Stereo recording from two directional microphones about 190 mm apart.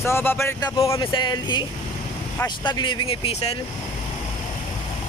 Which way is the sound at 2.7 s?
25° left (ahead or behind).